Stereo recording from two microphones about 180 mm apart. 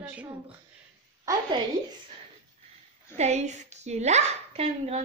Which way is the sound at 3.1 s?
40° right (ahead or behind).